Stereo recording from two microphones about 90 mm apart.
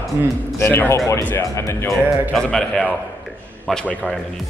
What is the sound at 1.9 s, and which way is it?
A man's voice, 5° left (ahead or behind).